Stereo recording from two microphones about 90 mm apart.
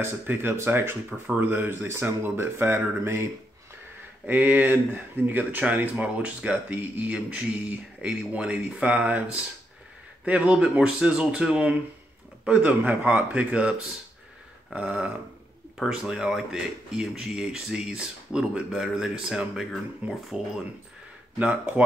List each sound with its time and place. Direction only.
0.0 s speech: 25° right (ahead or behind)
4.3 s speech: 20° right (ahead or behind)